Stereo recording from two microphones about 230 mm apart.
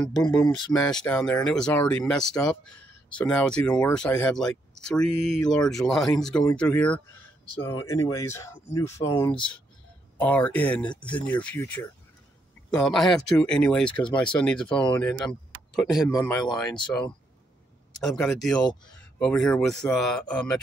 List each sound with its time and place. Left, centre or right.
0.0 s speech: centre; by 9.5 s left
10.1 s speech: centre
16.1 s speech: centre
17.9 s speech: centre